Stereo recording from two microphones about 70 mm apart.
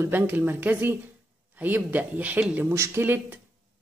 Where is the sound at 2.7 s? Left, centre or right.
Right.